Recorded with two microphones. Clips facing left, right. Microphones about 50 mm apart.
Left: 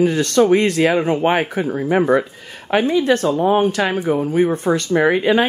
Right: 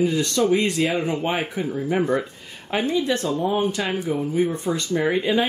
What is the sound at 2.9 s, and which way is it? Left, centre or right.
Speech, left.